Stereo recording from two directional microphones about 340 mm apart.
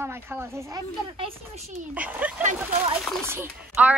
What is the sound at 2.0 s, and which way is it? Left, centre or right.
Speech, centre.